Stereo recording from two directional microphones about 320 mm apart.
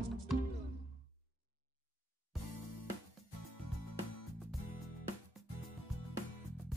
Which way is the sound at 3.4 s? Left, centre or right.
Left.